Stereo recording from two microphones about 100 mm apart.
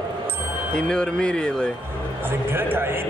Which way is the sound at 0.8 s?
10° left (ahead or behind).